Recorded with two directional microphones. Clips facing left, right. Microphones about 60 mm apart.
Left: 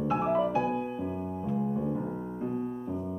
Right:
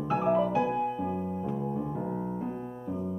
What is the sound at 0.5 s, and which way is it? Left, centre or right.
Music, centre.